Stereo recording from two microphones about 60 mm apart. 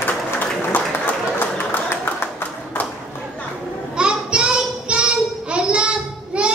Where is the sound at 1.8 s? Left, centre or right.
Left.